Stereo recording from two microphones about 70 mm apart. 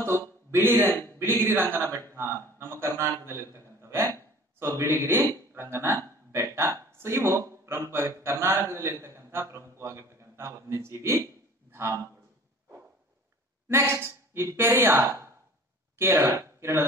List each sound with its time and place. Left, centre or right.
0.5 s speech: right
0.8 s a man's voice: left
1.4 s a man's voice: right
11.7 s a sound: right
13.7 s a man's voice: right
15.0 s speech: right
16.0 s a man's voice: right
16.3 s speech: right